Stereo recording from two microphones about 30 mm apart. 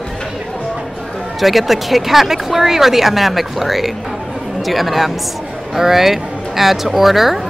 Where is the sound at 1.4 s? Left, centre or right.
Centre.